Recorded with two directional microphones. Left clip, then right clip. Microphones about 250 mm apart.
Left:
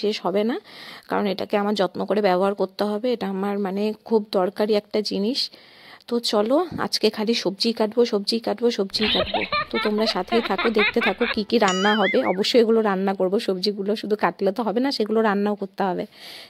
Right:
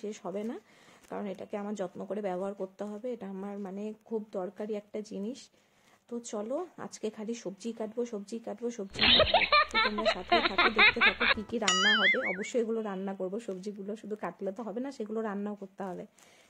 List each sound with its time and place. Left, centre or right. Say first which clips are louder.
0.0 s speech: left 15 dB; left
8.9 s speech: left 2 dB; centre
12.4 s speech: left 14 dB; left